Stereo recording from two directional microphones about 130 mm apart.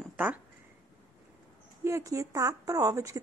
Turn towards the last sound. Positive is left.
turn(degrees=-25)  # may be behind; listen again after turning